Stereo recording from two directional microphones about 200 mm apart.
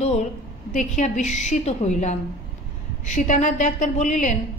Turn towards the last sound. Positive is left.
turn(degrees=35)  # may be behind; listen again after turning